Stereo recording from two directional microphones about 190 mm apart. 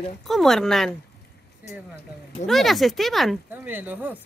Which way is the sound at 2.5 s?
Centre (ahead or behind).